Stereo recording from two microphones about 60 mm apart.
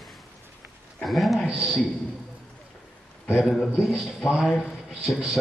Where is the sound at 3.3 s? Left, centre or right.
Centre.